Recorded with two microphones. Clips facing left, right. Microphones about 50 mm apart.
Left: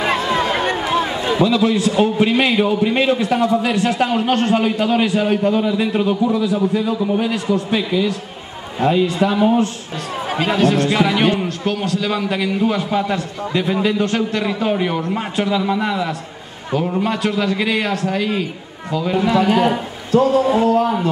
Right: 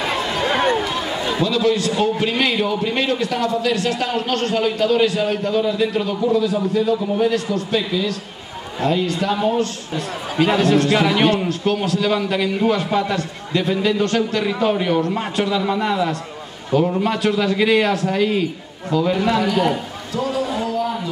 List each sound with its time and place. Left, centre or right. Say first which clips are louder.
0.7 s a sound: left 3 dB; centre
1.4 s a man's voice: left 3 dB; left
7.2 s a man's voice: right 2 dB; left
7.4 s a man's voice: left 2 dB; centre
10.7 s a man's voice: even; centre
11.4 s a man's voice: right 1 dB; centre
19.4 s a man's voice: left 3 dB; left